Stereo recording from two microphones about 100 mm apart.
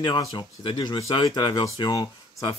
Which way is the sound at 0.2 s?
45° left (ahead or behind).